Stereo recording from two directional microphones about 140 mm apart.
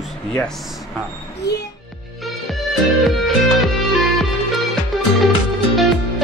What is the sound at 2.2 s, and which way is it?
Music, centre (ahead or behind).